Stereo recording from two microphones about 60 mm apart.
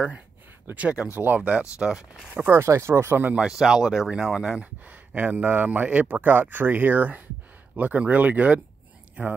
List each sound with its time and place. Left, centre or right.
0.7 s speech: right
1.6 s speech: centre
2.5 s speech: right
3.3 s speech: centre